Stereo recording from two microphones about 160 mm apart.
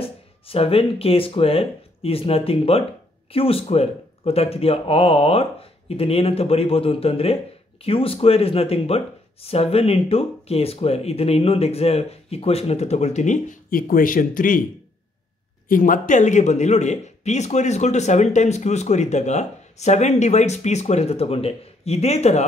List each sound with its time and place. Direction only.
0.0 s speech: 35° left (ahead or behind); by 14.6 s 60° left (ahead or behind)
15.7 s speech: 55° left (ahead or behind)